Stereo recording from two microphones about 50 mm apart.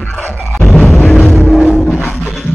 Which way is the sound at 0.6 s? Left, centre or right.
Centre.